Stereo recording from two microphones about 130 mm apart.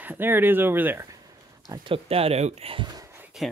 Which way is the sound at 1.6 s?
40° right (ahead or behind).